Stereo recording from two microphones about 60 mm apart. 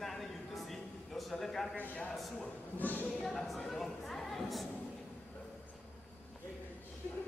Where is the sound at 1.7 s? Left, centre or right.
Left.